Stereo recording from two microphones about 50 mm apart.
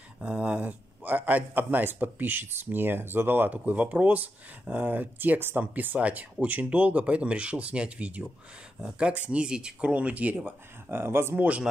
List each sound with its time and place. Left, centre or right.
0.2 s a man's voice: right
3.5 s a man's voice: right
9.4 s speech: centre
10.9 s speech: right
11.3 s speech: right